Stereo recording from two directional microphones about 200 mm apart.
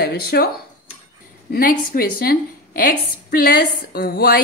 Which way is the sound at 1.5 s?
45° left (ahead or behind).